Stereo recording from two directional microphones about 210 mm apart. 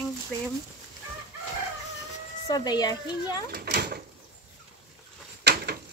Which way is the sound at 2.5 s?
20° left (ahead or behind).